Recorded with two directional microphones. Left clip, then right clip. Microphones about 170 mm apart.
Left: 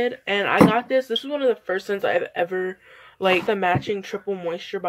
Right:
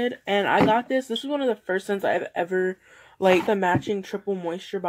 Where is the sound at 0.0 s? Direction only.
40° right (ahead or behind).